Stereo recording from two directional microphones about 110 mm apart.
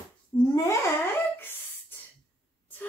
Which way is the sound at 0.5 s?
25° left (ahead or behind).